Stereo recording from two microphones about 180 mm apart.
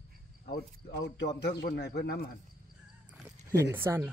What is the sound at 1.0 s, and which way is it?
Speech, 75° left (ahead or behind).